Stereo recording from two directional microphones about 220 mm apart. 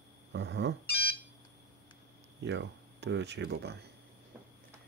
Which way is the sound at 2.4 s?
50° right (ahead or behind).